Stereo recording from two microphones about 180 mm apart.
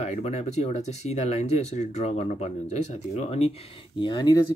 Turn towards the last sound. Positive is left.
turn(degrees=25)  # may be behind; listen again after turning